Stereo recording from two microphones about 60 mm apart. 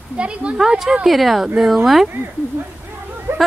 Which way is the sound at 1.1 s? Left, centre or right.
Centre.